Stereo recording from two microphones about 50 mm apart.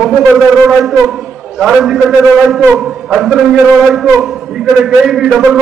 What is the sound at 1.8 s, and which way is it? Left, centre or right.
A man's voice, centre.